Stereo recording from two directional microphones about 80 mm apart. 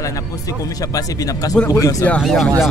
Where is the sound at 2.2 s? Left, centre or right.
Centre.